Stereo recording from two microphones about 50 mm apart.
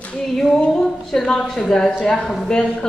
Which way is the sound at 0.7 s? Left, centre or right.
Centre.